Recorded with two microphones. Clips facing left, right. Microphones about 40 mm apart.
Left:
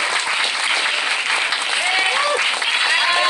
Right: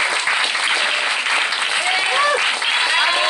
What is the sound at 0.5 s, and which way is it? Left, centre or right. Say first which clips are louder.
Applause: right 1 dB; right.